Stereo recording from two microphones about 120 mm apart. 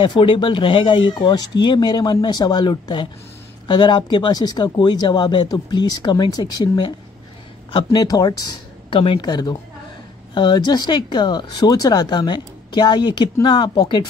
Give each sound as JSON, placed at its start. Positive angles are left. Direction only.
{"t": 0.0, "sound": "speech", "side_deg": 45}
{"t": 8.9, "sound": "speech", "side_deg": 45}